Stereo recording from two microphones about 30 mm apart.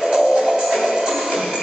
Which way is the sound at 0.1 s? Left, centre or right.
Right.